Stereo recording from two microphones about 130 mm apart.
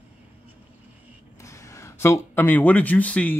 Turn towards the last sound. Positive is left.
turn(degrees=10)  # may be behind; listen again after turning